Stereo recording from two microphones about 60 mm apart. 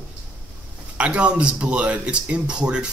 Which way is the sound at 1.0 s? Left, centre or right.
Right.